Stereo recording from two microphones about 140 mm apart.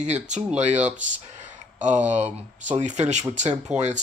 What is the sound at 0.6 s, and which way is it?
Speech, 55° right (ahead or behind).